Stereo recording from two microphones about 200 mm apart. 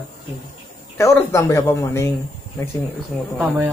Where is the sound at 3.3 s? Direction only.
5° right (ahead or behind).